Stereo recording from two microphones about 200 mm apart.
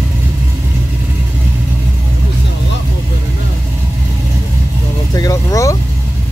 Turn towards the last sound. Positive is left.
turn(degrees=15)  # may be behind; listen again after turning